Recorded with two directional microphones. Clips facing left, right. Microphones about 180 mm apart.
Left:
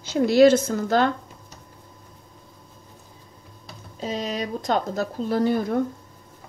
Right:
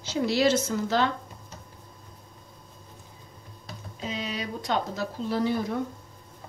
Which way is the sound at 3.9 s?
40° left (ahead or behind).